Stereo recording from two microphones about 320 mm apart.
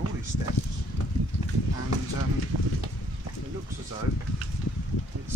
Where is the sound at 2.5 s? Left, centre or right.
Right.